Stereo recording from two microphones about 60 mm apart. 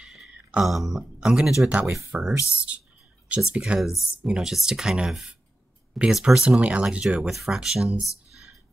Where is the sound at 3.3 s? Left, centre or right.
Right.